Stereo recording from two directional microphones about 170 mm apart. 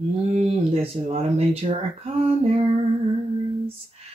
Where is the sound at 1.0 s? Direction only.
35° right (ahead or behind).